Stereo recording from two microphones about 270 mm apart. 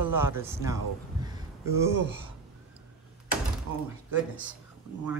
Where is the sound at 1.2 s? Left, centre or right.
Centre.